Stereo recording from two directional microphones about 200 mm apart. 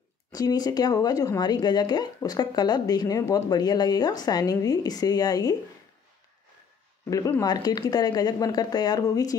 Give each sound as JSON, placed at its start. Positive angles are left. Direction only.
{"t": 0.3, "sound": "speech", "side_deg": 20}
{"t": 7.1, "sound": "speech", "side_deg": 15}